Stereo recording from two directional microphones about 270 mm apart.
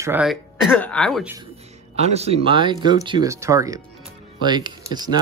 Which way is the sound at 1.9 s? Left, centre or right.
Right.